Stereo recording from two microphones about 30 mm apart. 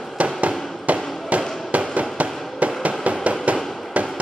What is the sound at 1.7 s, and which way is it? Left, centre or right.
Fireworks, right.